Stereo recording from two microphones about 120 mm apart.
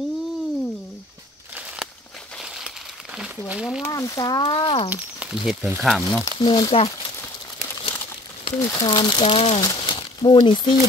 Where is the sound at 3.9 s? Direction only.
30° left (ahead or behind).